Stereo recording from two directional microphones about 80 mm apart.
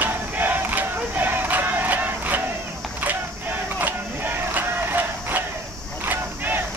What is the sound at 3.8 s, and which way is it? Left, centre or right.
Music, right.